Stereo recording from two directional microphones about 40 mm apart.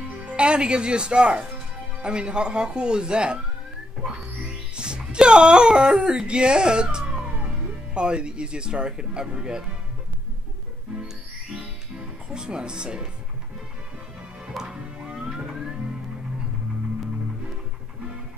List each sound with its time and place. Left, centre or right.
0.2 s speech: right
4.7 s speech: right
7.2 s speech: right
11.5 s music: right
14.6 s music: right